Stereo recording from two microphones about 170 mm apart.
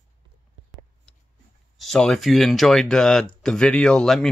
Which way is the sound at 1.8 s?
5° left (ahead or behind).